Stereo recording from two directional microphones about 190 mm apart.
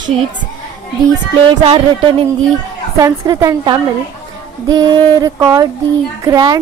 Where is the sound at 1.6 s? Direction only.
25° right (ahead or behind).